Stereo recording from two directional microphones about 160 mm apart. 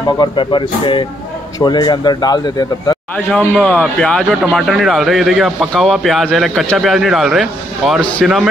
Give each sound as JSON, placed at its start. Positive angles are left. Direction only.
{"t": 0.2, "sound": "speech", "side_deg": 30}
{"t": 3.3, "sound": "speech", "side_deg": 0}